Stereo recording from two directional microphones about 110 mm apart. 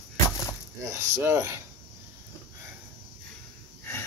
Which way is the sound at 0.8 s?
25° right (ahead or behind).